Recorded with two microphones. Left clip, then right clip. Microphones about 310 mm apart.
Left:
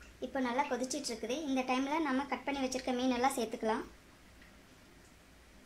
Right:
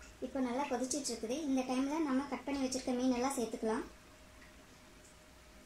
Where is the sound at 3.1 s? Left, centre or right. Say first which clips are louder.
Left 6 dB; left.